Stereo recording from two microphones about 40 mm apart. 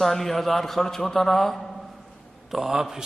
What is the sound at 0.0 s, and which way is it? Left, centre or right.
A man's voice, centre.